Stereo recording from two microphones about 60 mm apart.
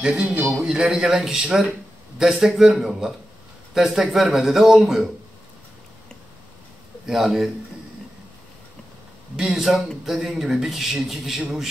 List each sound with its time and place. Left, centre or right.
0.0 s a man's voice: centre
0.4 s a man's voice: right
0.7 s a man's voice: centre
7.1 s a man's voice: centre
9.4 s a man's voice: centre